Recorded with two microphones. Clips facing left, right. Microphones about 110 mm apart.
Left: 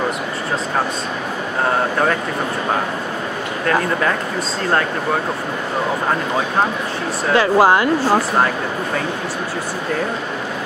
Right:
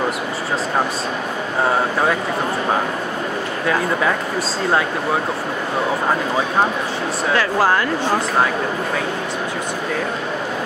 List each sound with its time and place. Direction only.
7.3 s speech: 20° left (ahead or behind)
8.0 s speech: 5° left (ahead or behind)